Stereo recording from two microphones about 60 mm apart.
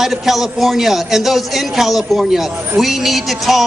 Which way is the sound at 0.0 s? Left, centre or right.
Centre.